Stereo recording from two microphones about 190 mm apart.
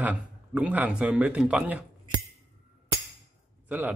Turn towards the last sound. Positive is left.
turn(degrees=-10)  # may be behind; listen again after turning